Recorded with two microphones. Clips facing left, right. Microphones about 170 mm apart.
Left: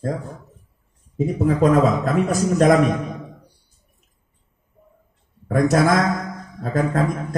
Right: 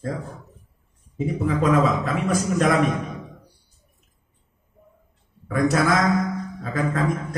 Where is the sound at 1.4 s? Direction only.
40° left (ahead or behind).